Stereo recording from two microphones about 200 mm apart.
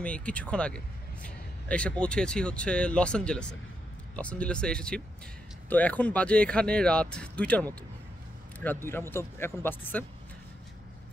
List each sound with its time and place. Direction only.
0.0 s speech: 5° left (ahead or behind)
8.8 s speech: 10° left (ahead or behind)